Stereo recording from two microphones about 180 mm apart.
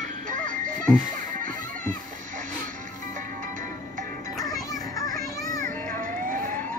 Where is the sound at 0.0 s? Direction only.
45° right (ahead or behind).